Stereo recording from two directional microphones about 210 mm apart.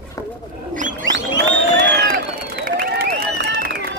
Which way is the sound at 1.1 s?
55° right (ahead or behind).